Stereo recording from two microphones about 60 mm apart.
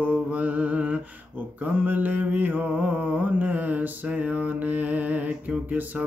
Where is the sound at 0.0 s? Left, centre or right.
Right.